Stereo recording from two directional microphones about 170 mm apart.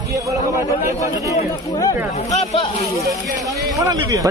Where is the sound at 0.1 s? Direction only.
20° right (ahead or behind).